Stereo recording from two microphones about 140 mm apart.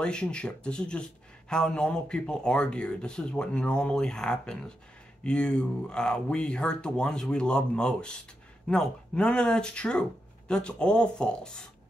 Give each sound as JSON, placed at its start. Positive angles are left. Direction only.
{"t": 0.0, "sound": "speech", "side_deg": 5}